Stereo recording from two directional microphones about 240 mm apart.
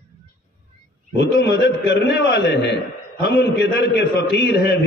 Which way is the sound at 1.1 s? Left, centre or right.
Left.